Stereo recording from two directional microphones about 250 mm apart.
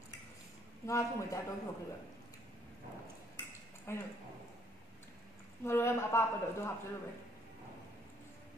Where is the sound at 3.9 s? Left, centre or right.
Centre.